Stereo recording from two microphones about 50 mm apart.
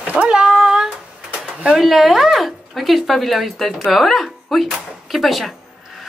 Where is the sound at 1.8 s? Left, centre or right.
Centre.